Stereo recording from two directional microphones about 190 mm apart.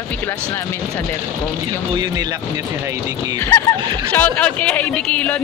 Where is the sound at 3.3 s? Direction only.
15° left (ahead or behind).